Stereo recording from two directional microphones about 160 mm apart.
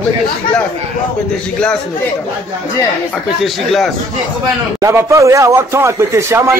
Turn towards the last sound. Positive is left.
turn(degrees=-15)  # may be behind; listen again after turning